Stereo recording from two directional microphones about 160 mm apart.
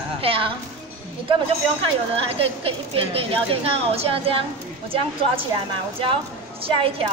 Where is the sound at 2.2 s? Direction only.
35° right (ahead or behind).